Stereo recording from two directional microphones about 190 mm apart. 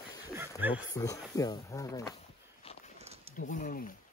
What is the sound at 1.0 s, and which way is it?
Speech, 20° left (ahead or behind).